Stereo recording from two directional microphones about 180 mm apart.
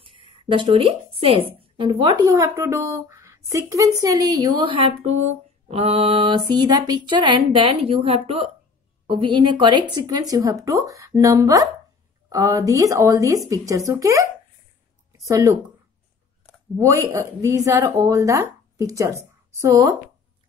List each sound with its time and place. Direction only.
0.0 s a woman's voice: 30° right (ahead or behind)
5.7 s a sound: 35° right (ahead or behind)
9.0 s speech: 30° right (ahead or behind)
16.7 s speech: 15° right (ahead or behind)